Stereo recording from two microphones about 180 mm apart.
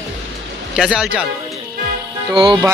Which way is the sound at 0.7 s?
5° right (ahead or behind).